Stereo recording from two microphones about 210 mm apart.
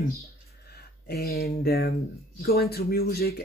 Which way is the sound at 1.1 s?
45° left (ahead or behind).